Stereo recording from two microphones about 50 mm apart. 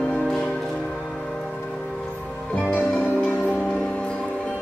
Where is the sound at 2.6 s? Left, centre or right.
Left.